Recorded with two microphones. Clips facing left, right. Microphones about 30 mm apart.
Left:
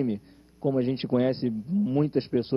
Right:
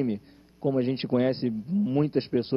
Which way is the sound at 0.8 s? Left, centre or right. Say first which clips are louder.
Even; right.